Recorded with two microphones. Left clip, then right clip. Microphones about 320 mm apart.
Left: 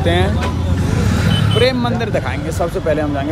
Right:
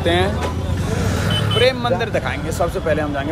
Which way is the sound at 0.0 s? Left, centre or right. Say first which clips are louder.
Left 1 dB; centre.